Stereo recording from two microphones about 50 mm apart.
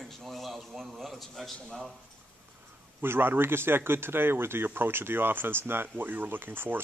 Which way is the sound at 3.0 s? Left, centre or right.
Right.